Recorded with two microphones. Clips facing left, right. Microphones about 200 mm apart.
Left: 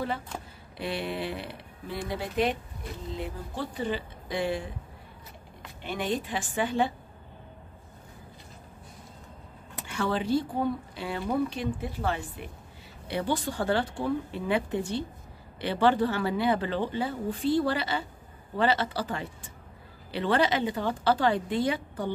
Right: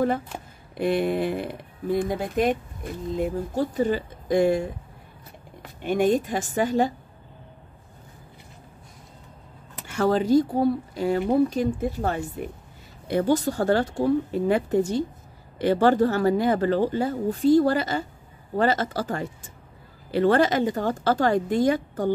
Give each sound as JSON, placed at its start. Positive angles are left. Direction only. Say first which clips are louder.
{"t": 0.7, "sound": "speech", "louder": "right 9 dB", "side_deg": -50}
{"t": 5.9, "sound": "speech", "louder": "right 9 dB", "side_deg": -45}
{"t": 9.8, "sound": "speech", "louder": "right 7 dB", "side_deg": -45}